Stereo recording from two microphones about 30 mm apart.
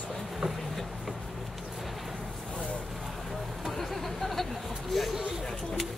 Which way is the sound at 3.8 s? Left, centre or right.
Centre.